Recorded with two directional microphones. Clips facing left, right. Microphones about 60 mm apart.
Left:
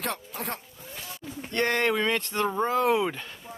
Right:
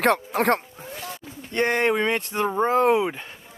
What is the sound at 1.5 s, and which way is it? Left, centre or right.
Speech, right.